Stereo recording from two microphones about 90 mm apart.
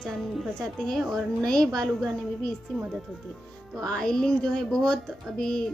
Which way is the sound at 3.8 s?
10° left (ahead or behind).